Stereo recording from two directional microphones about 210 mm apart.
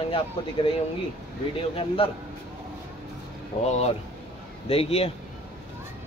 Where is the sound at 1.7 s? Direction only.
25° left (ahead or behind).